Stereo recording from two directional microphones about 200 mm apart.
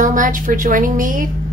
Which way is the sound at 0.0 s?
40° right (ahead or behind).